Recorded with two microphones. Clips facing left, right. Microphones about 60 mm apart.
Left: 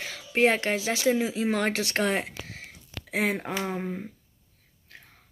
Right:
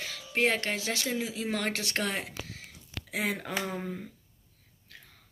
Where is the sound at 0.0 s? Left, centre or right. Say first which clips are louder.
Left 5 dB; left.